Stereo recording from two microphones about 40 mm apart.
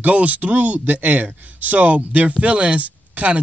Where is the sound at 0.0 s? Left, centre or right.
Right.